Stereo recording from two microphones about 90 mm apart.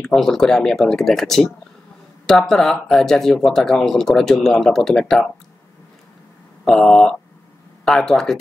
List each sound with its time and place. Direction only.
0.0 s speech: 5° left (ahead or behind)
6.6 s speech: 5° left (ahead or behind)